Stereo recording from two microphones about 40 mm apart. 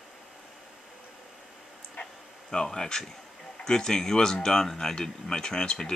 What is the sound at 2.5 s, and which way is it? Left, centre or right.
Speech, centre.